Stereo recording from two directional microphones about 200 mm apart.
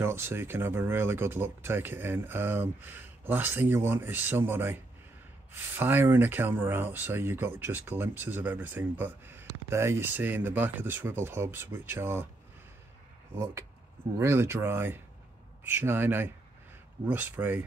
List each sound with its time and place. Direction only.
0.0 s speech: 10° right (ahead or behind)
13.3 s speech: 10° right (ahead or behind)